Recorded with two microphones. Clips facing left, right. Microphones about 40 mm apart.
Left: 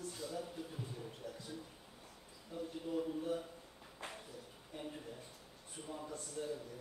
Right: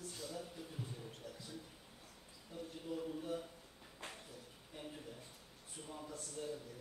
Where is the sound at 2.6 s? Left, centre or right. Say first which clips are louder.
Left 4 dB; centre.